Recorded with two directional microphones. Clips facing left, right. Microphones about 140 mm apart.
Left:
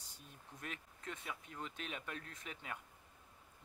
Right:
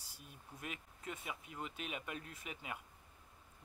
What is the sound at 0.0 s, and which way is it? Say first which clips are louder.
Speech: right 1 dB; 10° right (ahead or behind).